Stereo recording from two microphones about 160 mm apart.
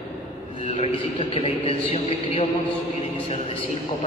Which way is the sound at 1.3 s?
35° left (ahead or behind).